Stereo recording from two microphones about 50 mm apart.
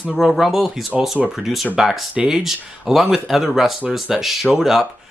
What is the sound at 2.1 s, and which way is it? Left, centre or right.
Speech, centre.